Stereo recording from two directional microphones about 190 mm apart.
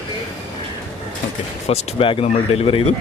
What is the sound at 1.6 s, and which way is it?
Speech, 30° left (ahead or behind).